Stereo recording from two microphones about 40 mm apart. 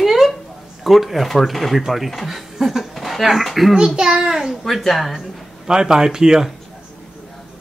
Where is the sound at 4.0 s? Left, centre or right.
Centre.